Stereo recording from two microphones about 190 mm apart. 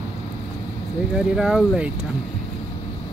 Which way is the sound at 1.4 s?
Centre (ahead or behind).